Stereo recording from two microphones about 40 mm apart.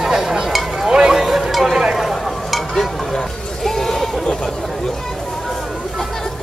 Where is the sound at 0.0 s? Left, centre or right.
Centre.